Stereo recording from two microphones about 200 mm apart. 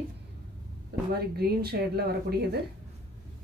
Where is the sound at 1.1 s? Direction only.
50° right (ahead or behind).